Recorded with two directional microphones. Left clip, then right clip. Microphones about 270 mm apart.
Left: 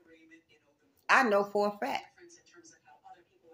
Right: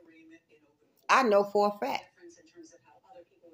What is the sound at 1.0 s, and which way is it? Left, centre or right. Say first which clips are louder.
Speech: right 2 dB; centre.